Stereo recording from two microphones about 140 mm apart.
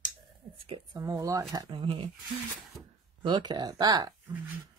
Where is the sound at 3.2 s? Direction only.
35° right (ahead or behind).